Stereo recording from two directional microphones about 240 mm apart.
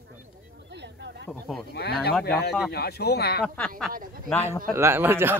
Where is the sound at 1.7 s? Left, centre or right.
Left.